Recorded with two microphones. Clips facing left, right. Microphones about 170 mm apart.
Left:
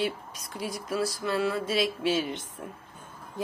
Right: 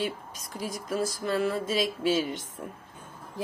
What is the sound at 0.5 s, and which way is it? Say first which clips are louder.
A woman's voice: even; 40° right (ahead or behind).